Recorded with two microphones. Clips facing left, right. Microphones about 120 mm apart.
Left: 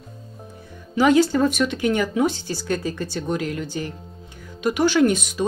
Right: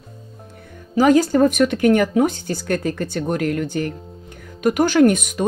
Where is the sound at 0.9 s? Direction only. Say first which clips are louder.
Right 2 dB; 40° right (ahead or behind).